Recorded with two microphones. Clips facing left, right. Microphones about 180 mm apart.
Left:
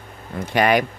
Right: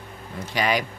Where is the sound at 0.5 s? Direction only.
55° left (ahead or behind).